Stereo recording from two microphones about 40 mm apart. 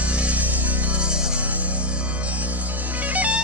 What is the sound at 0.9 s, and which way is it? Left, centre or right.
Music, right.